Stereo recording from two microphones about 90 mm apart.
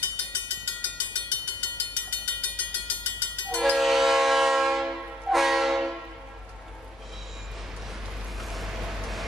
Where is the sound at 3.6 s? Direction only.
Centre (ahead or behind).